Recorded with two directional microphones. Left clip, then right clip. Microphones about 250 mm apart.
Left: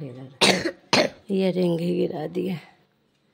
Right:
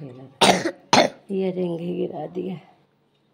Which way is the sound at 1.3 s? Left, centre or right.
Left.